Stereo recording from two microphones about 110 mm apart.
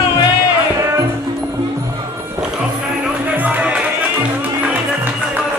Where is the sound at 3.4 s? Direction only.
15° right (ahead or behind).